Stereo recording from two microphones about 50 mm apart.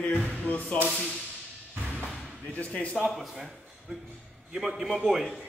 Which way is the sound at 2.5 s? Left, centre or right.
Left.